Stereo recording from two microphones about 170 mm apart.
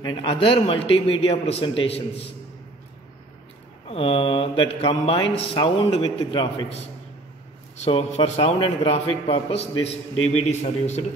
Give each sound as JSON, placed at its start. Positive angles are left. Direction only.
{"t": 0.0, "sound": "a man's voice", "side_deg": 25}
{"t": 3.8, "sound": "speech", "side_deg": 35}
{"t": 7.7, "sound": "a man's voice", "side_deg": 40}